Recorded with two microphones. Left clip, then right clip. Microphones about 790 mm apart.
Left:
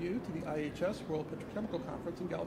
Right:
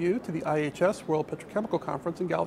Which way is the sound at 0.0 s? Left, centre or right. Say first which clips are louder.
Right 10 dB; right.